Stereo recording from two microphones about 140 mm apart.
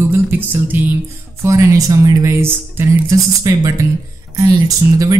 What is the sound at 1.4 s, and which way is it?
Speech, 25° right (ahead or behind).